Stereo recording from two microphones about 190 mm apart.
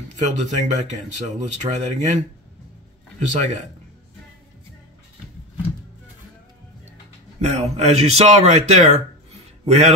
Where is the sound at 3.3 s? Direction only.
40° right (ahead or behind).